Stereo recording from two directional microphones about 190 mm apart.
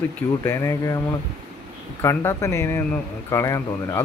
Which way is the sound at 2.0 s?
15° left (ahead or behind).